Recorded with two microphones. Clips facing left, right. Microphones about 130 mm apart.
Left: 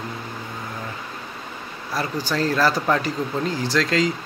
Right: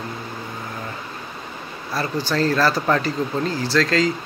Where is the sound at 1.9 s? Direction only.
15° left (ahead or behind).